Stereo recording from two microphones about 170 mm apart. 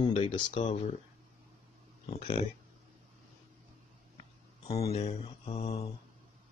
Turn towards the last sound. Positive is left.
turn(degrees=40)  # may be behind; listen again after turning